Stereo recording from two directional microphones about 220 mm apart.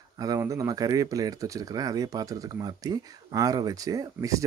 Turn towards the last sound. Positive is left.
turn(degrees=-15)  # may be behind; listen again after turning